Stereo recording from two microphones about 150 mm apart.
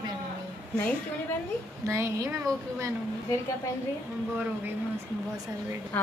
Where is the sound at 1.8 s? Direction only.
20° right (ahead or behind).